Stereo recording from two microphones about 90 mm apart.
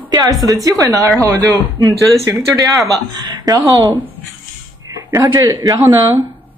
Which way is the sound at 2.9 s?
45° right (ahead or behind).